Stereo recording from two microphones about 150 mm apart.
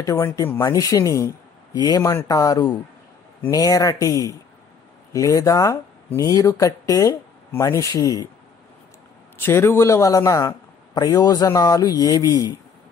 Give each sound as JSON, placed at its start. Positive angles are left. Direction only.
{"t": 0.0, "sound": "speech", "side_deg": 20}
{"t": 9.4, "sound": "speech", "side_deg": 15}